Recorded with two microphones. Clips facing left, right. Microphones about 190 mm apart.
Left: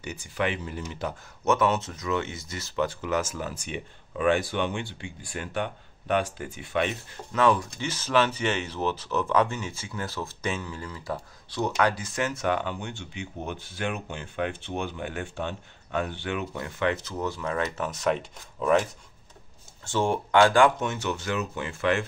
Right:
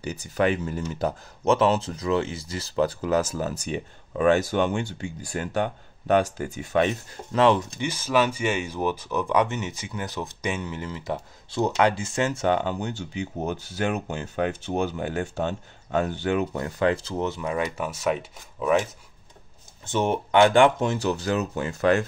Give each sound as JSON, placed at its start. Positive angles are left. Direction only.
{"t": 0.0, "sound": "speech", "side_deg": -35}
{"t": 7.3, "sound": "speech", "side_deg": -25}
{"t": 7.9, "sound": "speech", "side_deg": -10}
{"t": 19.9, "sound": "speech", "side_deg": -20}